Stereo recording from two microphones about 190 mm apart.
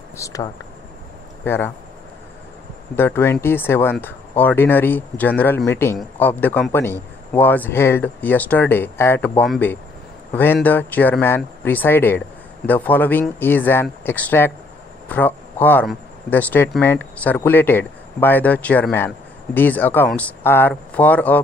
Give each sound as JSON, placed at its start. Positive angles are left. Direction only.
{"t": 0.2, "sound": "speech", "side_deg": 20}
{"t": 3.0, "sound": "speech", "side_deg": 10}